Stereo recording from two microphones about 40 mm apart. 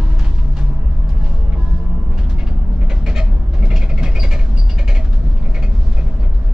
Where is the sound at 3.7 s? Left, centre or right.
Centre.